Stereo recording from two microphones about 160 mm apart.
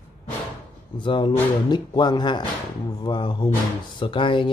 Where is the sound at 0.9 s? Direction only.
30° left (ahead or behind).